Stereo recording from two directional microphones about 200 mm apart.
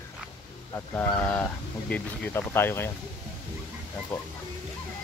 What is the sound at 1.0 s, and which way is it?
Speech, 10° left (ahead or behind).